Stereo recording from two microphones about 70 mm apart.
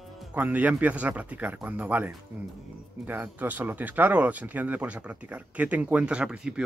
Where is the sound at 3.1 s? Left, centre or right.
Right.